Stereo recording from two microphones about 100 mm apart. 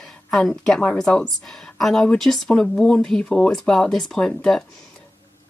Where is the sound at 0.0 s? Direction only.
5° left (ahead or behind).